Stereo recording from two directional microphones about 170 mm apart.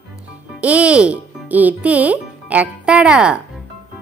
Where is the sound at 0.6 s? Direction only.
5° right (ahead or behind).